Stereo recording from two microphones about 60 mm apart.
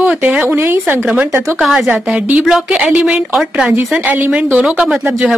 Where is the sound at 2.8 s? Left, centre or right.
Right.